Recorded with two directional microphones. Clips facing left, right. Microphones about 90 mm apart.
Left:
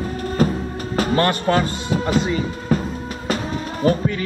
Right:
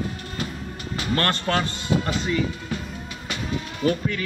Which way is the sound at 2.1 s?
45° left (ahead or behind).